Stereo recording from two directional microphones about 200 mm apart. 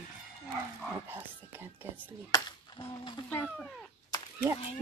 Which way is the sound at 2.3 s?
25° left (ahead or behind).